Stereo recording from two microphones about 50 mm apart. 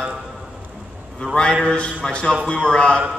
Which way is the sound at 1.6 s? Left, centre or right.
Left.